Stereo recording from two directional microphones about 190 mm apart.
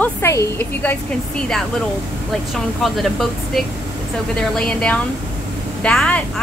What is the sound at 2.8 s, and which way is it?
A woman's voice, centre (ahead or behind).